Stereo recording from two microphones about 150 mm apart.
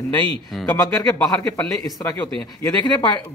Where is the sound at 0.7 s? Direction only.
25° left (ahead or behind).